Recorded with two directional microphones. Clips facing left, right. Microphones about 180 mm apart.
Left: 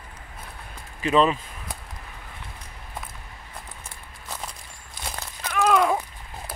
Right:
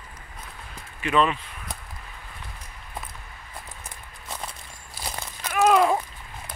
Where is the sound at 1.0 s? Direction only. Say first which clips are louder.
Left 2 dB; 30° left (ahead or behind).